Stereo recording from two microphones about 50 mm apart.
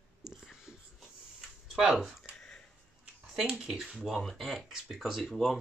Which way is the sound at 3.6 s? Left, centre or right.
Centre.